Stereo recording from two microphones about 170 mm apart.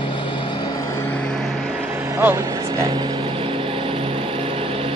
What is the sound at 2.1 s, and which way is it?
Speech, 15° right (ahead or behind).